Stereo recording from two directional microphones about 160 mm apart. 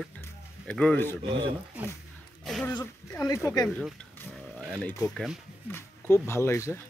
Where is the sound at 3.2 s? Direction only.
20° left (ahead or behind).